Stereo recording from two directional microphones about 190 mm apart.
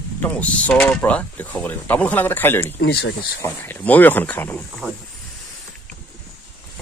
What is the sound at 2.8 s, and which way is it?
Speech, 65° left (ahead or behind).